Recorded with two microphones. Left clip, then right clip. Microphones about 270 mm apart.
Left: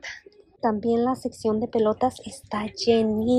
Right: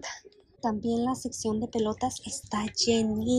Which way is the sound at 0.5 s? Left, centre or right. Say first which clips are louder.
Left 7 dB; centre.